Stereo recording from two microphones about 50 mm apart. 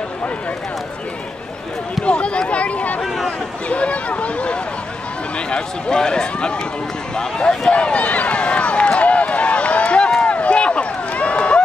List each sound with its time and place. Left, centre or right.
2.0 s speech: left
7.7 s run: left